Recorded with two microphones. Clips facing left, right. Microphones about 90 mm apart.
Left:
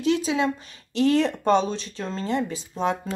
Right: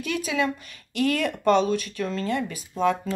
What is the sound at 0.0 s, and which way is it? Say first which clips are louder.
Speech: left 4 dB; 25° left (ahead or behind).